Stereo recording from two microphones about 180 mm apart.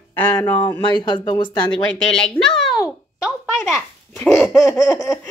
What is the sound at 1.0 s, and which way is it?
Speech, 25° left (ahead or behind).